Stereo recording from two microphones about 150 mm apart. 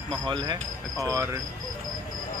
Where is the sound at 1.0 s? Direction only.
20° right (ahead or behind).